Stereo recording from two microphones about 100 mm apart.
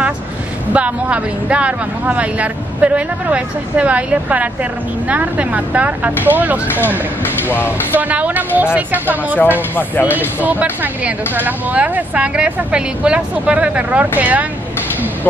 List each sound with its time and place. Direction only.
0.7 s speech: 10° right (ahead or behind)
6.7 s speech: 20° left (ahead or behind)
7.9 s speech: 15° right (ahead or behind)
9.6 s speech: 20° left (ahead or behind)
10.4 s speech: 15° right (ahead or behind)